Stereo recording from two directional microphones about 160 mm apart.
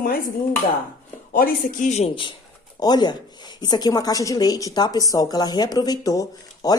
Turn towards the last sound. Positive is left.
turn(degrees=20)  # may be behind; listen again after turning